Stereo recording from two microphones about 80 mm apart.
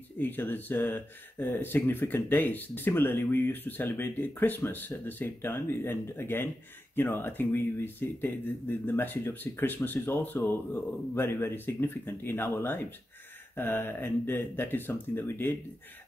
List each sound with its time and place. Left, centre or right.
0.2 s speech: left